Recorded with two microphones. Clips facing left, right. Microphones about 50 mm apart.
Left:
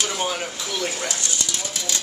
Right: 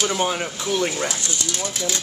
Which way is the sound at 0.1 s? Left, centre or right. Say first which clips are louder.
Right 3 dB; centre.